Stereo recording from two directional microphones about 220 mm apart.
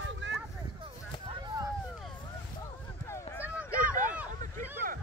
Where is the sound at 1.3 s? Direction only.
20° right (ahead or behind).